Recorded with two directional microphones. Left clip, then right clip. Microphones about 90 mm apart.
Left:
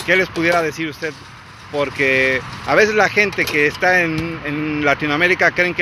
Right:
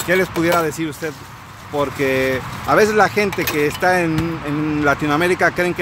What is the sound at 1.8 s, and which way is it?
Speech, 20° right (ahead or behind).